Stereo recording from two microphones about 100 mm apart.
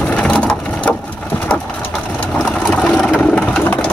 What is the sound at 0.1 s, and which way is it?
Crushing, 10° left (ahead or behind).